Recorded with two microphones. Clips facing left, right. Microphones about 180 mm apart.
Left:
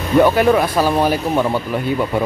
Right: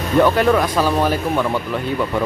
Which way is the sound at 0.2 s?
15° left (ahead or behind).